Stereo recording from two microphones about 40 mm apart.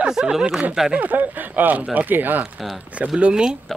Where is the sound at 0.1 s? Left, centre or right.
Centre.